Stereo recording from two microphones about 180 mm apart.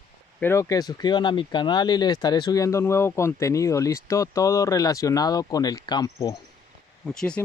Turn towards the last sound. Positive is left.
turn(degrees=5)  # may be behind; listen again after turning